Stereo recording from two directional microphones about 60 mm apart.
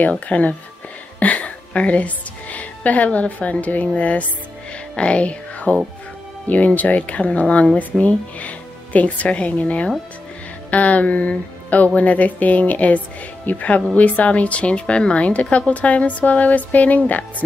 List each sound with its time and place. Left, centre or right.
0.3 s a woman's voice: left
4.9 s music: centre
6.4 s speech: left